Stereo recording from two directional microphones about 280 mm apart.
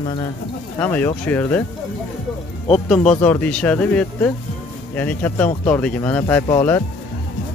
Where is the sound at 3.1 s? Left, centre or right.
Centre.